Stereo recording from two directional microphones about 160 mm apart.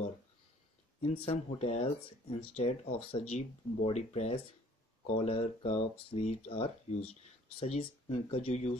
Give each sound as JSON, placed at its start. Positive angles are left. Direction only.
{"t": 1.0, "sound": "speech", "side_deg": 40}